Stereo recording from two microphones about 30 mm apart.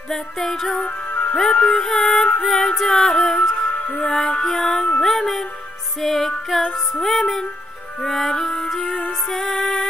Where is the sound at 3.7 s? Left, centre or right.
Left.